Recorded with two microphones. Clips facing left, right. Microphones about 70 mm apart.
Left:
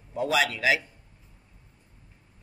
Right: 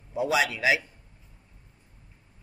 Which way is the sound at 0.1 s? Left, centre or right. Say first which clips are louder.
Even; centre.